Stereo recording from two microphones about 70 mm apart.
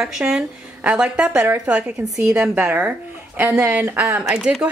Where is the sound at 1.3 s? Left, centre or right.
Right.